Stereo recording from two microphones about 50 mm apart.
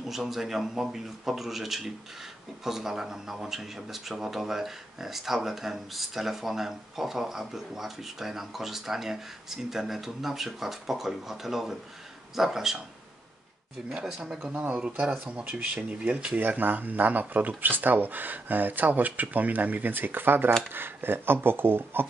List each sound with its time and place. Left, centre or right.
0.0 s speech: centre
14.2 s speech: centre
14.5 s speech: right
16.3 s speech: right